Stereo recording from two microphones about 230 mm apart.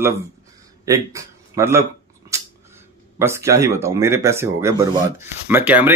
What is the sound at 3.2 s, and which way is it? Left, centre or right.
Speech, centre.